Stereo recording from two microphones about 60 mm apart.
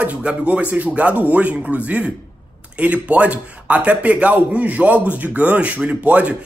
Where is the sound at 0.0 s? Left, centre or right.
Right.